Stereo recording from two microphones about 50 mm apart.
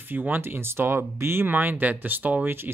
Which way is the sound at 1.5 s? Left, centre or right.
Right.